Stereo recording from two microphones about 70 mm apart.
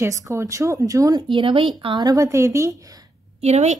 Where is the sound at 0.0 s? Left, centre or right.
Right.